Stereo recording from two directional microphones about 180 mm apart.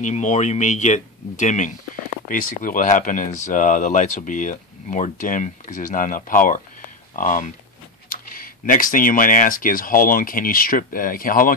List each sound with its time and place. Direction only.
0.0 s speech: 40° left (ahead or behind)